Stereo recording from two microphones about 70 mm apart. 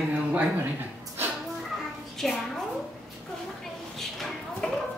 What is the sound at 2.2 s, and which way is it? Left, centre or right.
Speech, centre.